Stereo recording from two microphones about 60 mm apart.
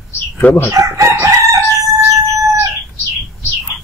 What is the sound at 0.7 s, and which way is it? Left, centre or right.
Chicken, right.